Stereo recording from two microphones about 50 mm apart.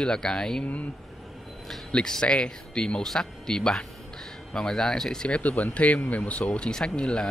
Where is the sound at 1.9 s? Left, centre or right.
Centre.